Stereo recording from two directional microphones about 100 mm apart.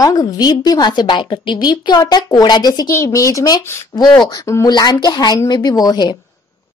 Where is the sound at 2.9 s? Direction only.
30° left (ahead or behind).